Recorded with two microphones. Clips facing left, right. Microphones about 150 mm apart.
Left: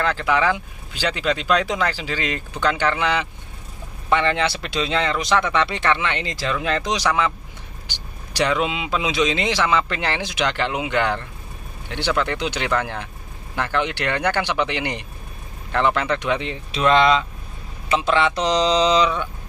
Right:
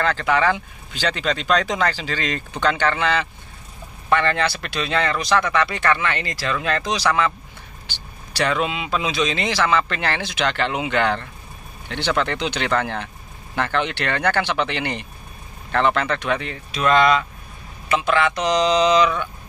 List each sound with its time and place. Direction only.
0.0 s speech: 5° left (ahead or behind); by 19.2 s 25° left (ahead or behind)